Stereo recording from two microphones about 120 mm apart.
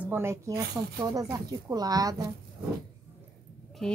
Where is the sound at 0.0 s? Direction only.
20° right (ahead or behind).